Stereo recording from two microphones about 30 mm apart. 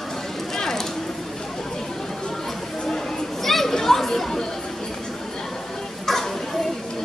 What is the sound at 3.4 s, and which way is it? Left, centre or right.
Chatter, centre.